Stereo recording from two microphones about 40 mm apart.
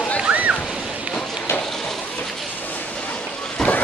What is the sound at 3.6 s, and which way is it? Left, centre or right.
Vehicle, centre.